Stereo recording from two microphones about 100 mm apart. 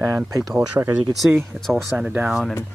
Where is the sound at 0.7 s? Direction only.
25° right (ahead or behind).